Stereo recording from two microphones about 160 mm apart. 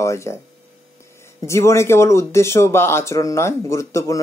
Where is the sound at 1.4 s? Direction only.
15° left (ahead or behind).